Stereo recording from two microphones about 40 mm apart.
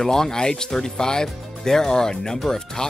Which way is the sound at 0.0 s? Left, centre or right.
Centre.